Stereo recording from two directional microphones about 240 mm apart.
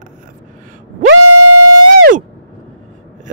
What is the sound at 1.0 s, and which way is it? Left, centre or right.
Music, right.